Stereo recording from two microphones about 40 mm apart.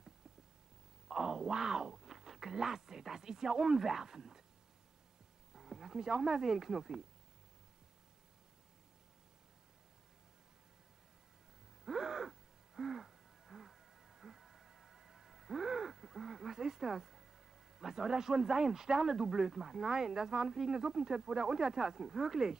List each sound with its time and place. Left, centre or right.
1.0 s speech: centre
5.5 s a sound: centre
6.2 s speech: centre
11.8 s gasp: centre
17.7 s speech: centre